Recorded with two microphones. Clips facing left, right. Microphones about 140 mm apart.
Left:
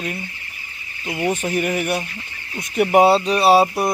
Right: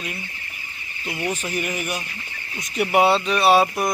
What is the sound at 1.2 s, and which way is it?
Speech, 50° left (ahead or behind).